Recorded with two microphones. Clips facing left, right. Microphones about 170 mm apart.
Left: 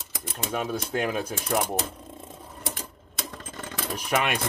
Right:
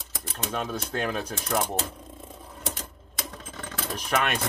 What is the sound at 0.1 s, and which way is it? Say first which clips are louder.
Speech: left 1 dB; 10° left (ahead or behind).